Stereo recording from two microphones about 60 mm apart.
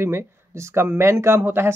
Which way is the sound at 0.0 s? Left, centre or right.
Right.